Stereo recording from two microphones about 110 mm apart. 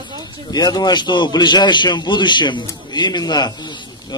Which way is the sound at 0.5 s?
40° left (ahead or behind).